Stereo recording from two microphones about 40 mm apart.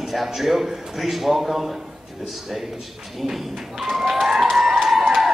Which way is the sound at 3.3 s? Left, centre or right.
Centre.